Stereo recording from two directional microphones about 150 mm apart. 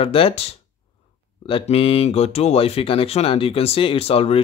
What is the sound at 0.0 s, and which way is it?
Speech, 40° left (ahead or behind).